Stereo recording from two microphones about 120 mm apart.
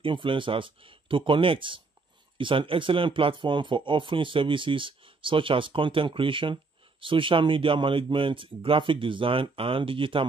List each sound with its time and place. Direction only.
0.0 s speech: 45° right (ahead or behind)